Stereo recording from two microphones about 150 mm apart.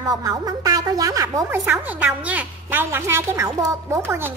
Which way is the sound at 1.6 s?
5° right (ahead or behind).